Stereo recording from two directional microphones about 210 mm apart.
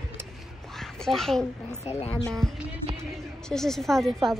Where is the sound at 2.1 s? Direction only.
Centre (ahead or behind).